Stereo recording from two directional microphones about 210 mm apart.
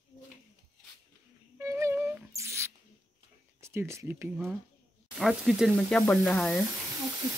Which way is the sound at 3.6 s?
15° right (ahead or behind).